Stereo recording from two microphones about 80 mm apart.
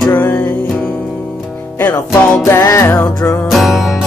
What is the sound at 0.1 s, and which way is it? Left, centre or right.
Music, left.